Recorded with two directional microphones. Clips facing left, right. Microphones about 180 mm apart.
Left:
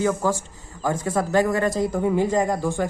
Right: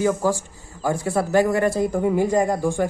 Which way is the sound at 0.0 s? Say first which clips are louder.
Right 2 dB; 15° right (ahead or behind).